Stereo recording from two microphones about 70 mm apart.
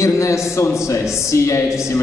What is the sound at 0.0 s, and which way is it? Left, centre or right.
A man's voice, left.